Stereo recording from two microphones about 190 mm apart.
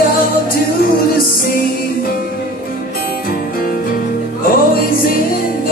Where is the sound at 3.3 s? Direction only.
50° left (ahead or behind).